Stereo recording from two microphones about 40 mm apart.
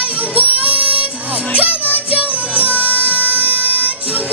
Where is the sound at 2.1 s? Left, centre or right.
Right.